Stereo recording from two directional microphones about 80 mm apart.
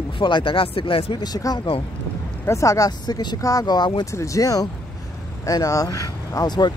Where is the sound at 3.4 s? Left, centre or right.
Left.